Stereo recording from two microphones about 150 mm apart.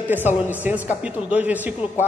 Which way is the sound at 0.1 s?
10° right (ahead or behind).